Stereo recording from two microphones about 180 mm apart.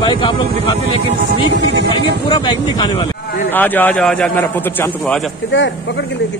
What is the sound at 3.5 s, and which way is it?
A man's voice, 10° left (ahead or behind).